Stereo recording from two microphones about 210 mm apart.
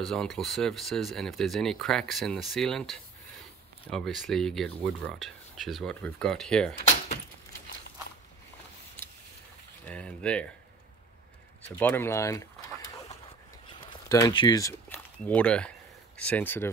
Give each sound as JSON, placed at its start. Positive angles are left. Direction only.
{"t": 0.0, "sound": "speech", "side_deg": 0}
{"t": 9.8, "sound": "speech", "side_deg": 5}
{"t": 11.8, "sound": "speech", "side_deg": 10}
{"t": 13.1, "sound": "a sound", "side_deg": 25}
{"t": 16.2, "sound": "speech", "side_deg": 5}